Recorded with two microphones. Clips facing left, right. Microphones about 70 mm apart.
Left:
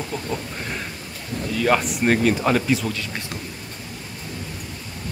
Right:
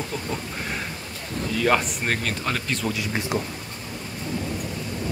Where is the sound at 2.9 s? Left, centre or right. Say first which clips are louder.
Right 3 dB; centre.